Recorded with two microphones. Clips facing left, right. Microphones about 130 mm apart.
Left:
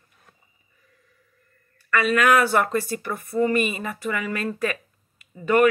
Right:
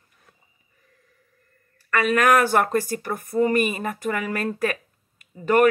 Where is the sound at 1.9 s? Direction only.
45° right (ahead or behind).